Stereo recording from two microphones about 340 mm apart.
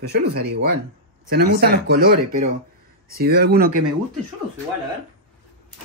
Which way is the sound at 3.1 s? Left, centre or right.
Right.